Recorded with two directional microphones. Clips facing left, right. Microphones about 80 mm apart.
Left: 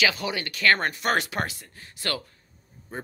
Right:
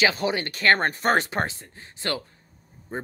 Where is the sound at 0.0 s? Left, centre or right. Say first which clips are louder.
Right 3 dB; right.